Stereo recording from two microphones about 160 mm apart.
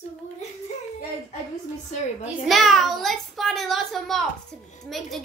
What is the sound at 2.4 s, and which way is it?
A child's voice, centre (ahead or behind).